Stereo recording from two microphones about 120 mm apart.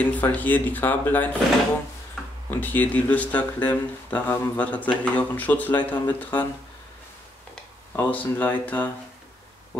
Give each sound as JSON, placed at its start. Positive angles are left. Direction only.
{"t": 0.0, "sound": "speech", "side_deg": 15}
{"t": 2.5, "sound": "speech", "side_deg": 15}
{"t": 7.9, "sound": "speech", "side_deg": 15}